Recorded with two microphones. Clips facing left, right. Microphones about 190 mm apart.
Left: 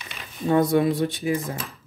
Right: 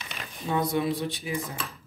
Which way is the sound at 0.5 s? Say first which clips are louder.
Left 7 dB; 50° left (ahead or behind).